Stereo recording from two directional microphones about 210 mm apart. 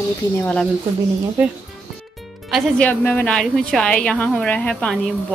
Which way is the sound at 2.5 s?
5° left (ahead or behind).